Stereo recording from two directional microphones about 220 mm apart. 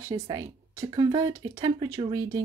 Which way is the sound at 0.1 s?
15° right (ahead or behind).